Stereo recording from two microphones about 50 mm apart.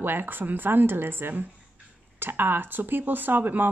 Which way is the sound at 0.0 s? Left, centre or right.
Right.